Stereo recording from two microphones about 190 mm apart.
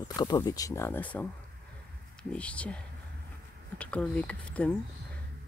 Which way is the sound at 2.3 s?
5° left (ahead or behind).